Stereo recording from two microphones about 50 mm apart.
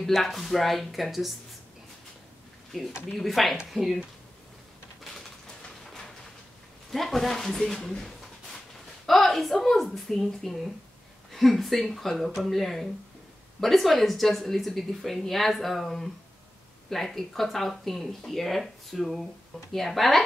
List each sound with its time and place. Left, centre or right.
0.0 s a woman's voice: centre
2.7 s a woman's voice: centre
6.9 s a woman's voice: centre
9.0 s a woman's voice: centre